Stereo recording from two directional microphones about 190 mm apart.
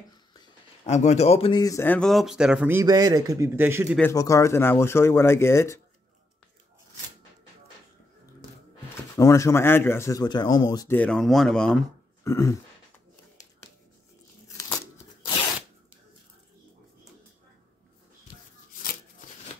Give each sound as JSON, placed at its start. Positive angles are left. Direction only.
{"t": 0.8, "sound": "speech", "side_deg": 35}
{"t": 4.1, "sound": "speech", "side_deg": 15}
{"t": 9.1, "sound": "speech", "side_deg": 15}
{"t": 10.9, "sound": "speech", "side_deg": 5}
{"t": 12.3, "sound": "speech", "side_deg": 15}